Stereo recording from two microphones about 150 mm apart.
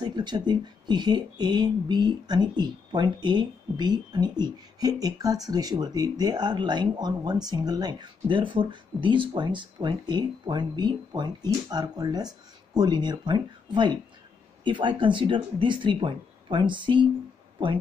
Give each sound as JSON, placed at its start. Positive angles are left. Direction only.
{"t": 0.0, "sound": "speech", "side_deg": -30}